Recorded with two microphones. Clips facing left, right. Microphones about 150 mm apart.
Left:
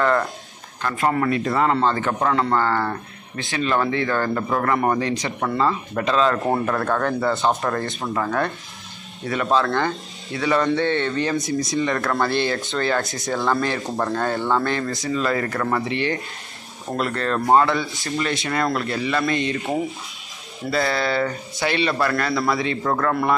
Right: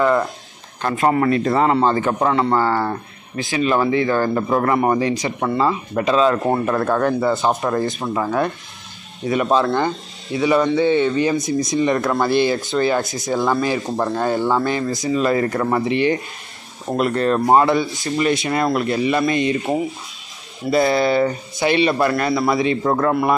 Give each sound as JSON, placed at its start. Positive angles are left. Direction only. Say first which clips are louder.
{"t": 0.8, "sound": "speech", "louder": "right 4 dB", "side_deg": -25}
{"t": 11.4, "sound": "speech", "louder": "right 4 dB", "side_deg": -20}
{"t": 20.7, "sound": "speech", "louder": "right 6 dB", "side_deg": -15}